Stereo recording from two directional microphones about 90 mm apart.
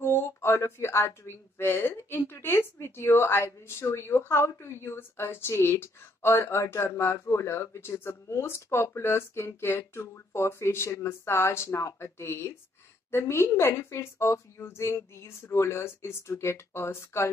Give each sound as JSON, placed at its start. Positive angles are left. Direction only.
{"t": 0.0, "sound": "a woman's voice", "side_deg": 25}